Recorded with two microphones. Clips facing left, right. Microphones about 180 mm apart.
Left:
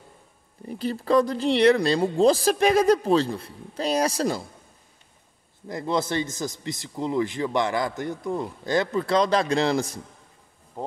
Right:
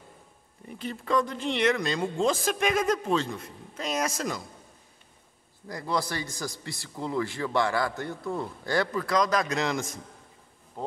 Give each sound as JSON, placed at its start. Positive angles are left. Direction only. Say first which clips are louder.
{"t": 0.7, "sound": "speech", "louder": "left 6 dB", "side_deg": 35}
{"t": 5.7, "sound": "speech", "louder": "left 4 dB", "side_deg": 20}